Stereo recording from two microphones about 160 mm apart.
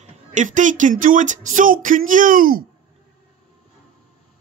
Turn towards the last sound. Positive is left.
turn(degrees=-60)  # may be behind; listen again after turning